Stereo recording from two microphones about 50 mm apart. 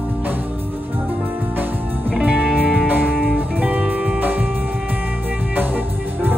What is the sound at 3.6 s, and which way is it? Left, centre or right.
Music, right.